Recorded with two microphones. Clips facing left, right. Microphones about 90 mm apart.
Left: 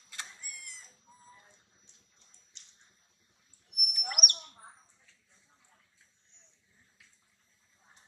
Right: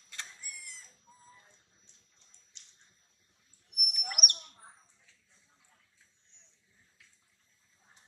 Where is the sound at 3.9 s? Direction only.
5° left (ahead or behind).